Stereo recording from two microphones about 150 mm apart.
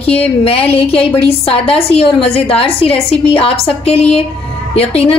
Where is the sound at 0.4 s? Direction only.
40° left (ahead or behind).